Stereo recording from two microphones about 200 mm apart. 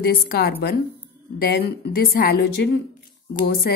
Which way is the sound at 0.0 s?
50° left (ahead or behind).